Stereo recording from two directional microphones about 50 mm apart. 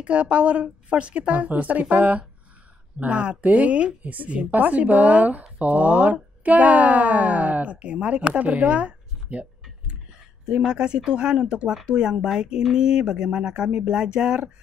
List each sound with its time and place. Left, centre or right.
0.0 s a woman's voice: right